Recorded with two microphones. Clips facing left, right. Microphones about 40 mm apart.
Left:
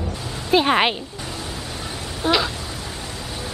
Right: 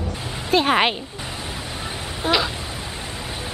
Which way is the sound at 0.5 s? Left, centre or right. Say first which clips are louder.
Left 1 dB; centre.